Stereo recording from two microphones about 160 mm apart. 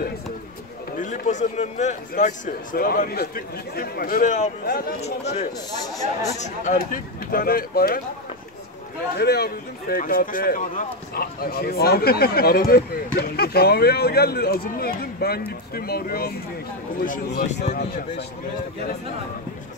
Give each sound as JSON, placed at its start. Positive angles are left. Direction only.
{"t": 0.9, "sound": "a man's voice", "side_deg": 55}
{"t": 4.6, "sound": "speech", "side_deg": 70}
{"t": 5.0, "sound": "speech", "side_deg": 45}
{"t": 6.4, "sound": "a man's voice", "side_deg": 55}
{"t": 9.2, "sound": "speech", "side_deg": 75}
{"t": 17.0, "sound": "speech", "side_deg": 60}